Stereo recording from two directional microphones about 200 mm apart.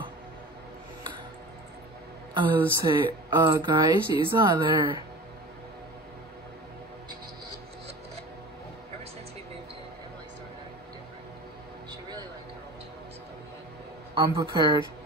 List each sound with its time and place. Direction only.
2.3 s speech: 25° right (ahead or behind)
11.9 s a sound: 20° right (ahead or behind)
14.1 s speech: 25° right (ahead or behind)